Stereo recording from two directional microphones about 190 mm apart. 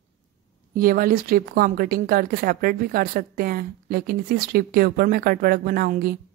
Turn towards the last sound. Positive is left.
turn(degrees=-50)  # may be behind; listen again after turning